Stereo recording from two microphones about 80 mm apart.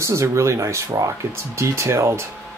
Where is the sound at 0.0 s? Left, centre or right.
Right.